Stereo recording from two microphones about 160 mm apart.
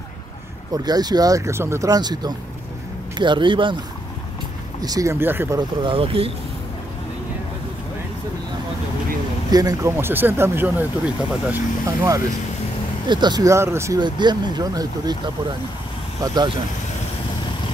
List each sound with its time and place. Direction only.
0.8 s speech: 25° right (ahead or behind)
4.8 s speech: 20° right (ahead or behind)
5.9 s speech: 35° right (ahead or behind)
9.5 s speech: 20° right (ahead or behind)
13.0 s speech: 25° right (ahead or behind)